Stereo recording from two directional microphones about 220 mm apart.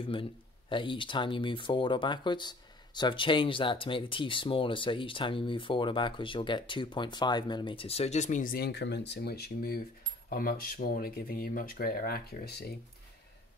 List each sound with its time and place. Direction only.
0.0 s speech: 25° left (ahead or behind); by 12.6 s 45° left (ahead or behind)